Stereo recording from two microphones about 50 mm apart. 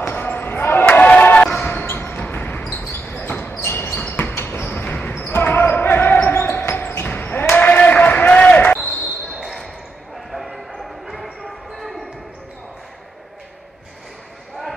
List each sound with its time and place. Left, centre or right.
0.1 s basketball bounce: left
1.9 s a sound: left
2.8 s basketball bounce: left
4.4 s a sound: left
4.6 s basketball bounce: left
7.5 s a sound: left
9.4 s basketball bounce: centre
10.3 s bow-wow: centre
11.4 s basketball bounce: centre